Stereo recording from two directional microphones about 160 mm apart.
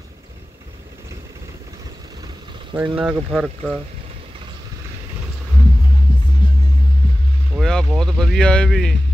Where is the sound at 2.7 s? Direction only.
30° right (ahead or behind).